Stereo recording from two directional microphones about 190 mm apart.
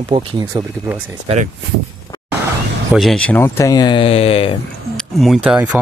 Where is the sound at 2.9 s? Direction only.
5° left (ahead or behind); by 4.5 s 30° left (ahead or behind).